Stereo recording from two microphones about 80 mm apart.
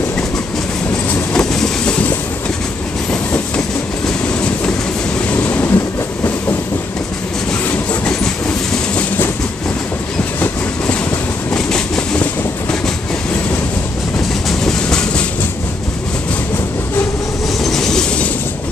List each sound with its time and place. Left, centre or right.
1.3 s train: centre
5.3 s train: left
11.5 s train: centre
14.5 s train: centre
17.6 s train: centre